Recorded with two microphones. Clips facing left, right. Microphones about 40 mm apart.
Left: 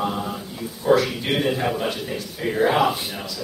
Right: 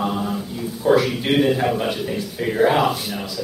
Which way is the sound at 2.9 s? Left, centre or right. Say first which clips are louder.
Right 2 dB; centre.